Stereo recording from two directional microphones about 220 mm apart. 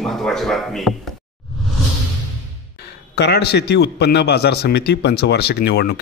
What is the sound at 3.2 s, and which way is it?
A man's voice, 50° left (ahead or behind).